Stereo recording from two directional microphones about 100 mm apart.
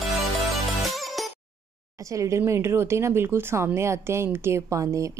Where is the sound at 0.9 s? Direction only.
Centre (ahead or behind).